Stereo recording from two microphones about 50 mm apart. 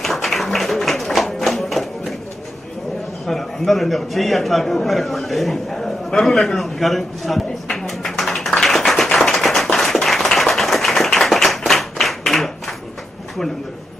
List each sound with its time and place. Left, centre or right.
0.0 s tap: centre
3.3 s a man's voice: centre
7.6 s a sound: centre